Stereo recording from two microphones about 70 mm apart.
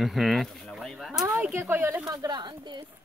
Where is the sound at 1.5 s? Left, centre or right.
Right.